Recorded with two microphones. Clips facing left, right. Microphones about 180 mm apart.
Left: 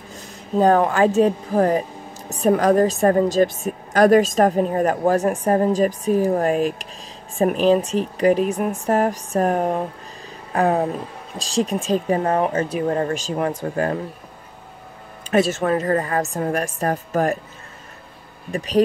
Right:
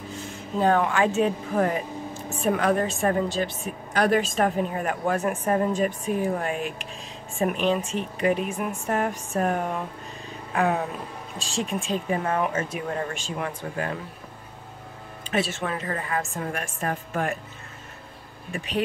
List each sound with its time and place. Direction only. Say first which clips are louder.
0.6 s speech: left 6 dB; 40° left (ahead or behind)
15.3 s speech: left 9 dB; 45° left (ahead or behind)
18.5 s speech: left 7 dB; 40° left (ahead or behind)